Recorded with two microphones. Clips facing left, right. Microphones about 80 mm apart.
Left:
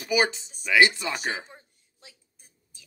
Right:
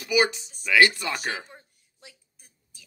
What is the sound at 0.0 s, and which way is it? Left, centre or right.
Speech, left.